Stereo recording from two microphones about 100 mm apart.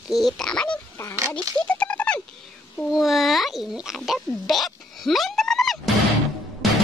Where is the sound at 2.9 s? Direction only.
Centre (ahead or behind).